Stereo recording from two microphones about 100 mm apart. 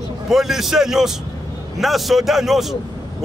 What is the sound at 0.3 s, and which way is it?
A man's voice, 5° right (ahead or behind).